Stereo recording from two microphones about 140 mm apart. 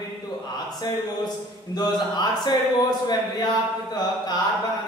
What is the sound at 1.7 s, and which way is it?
Speech, 30° left (ahead or behind).